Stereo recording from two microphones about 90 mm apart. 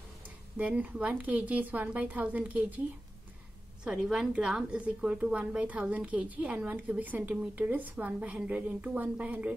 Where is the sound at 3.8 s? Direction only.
10° right (ahead or behind).